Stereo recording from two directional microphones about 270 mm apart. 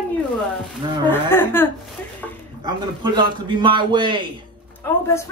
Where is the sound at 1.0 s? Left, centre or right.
Centre.